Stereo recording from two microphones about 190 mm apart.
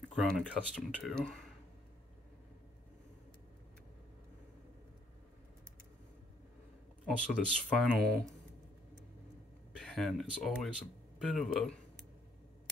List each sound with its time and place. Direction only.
0.1 s speech: 5° left (ahead or behind)
7.1 s speech: centre (ahead or behind)
9.7 s speech: 5° left (ahead or behind)